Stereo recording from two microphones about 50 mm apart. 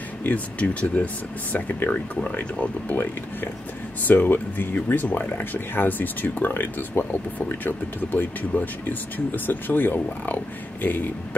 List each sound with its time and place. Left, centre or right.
0.2 s speech: left